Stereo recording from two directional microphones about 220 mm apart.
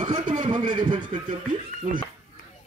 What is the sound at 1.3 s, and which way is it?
Speech, 35° right (ahead or behind).